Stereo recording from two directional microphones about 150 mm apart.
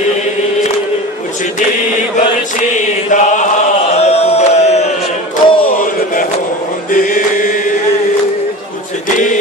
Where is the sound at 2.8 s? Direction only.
55° left (ahead or behind).